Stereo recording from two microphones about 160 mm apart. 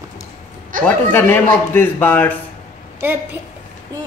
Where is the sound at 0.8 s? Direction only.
15° left (ahead or behind).